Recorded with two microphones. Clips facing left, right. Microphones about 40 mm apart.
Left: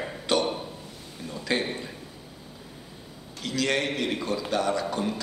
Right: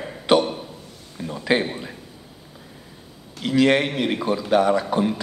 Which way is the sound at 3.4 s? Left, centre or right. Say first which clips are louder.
Right 9 dB; right.